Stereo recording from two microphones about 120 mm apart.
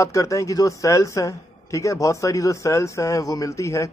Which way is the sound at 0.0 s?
25° left (ahead or behind).